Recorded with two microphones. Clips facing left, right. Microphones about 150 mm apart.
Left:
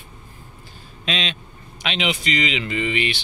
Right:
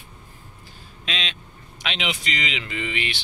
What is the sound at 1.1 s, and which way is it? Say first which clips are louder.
Speech: left 5 dB; 30° left (ahead or behind).